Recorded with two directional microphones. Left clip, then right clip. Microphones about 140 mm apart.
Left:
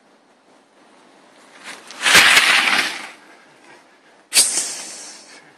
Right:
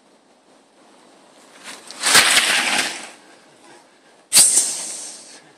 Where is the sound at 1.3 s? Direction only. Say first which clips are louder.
Left 2 dB; centre (ahead or behind).